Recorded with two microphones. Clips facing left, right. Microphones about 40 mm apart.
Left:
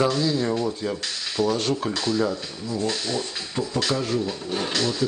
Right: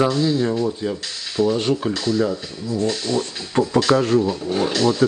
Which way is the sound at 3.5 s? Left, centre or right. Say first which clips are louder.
Right 10 dB; right.